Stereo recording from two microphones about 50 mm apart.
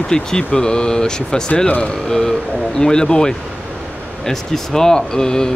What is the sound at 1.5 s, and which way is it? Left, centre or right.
Speech, left.